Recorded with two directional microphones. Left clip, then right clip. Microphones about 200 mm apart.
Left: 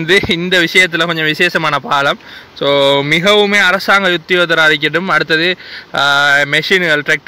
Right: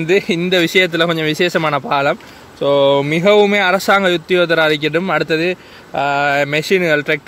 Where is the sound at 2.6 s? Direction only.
20° left (ahead or behind).